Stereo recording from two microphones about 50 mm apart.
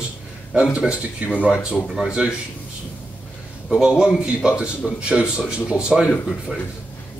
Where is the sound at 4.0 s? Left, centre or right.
Centre.